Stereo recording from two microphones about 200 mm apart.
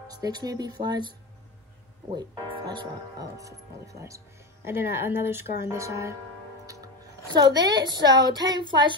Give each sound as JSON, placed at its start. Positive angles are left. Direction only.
{"t": 0.1, "sound": "a woman's voice", "side_deg": -20}
{"t": 2.1, "sound": "speech", "side_deg": -20}
{"t": 6.6, "sound": "music", "side_deg": -15}
{"t": 7.3, "sound": "a woman's voice", "side_deg": -20}